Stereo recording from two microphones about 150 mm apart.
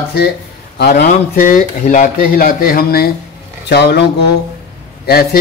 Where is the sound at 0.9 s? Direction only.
80° left.